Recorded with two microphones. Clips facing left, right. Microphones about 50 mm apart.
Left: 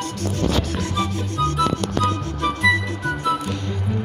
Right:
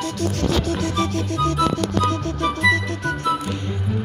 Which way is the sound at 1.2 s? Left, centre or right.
Centre.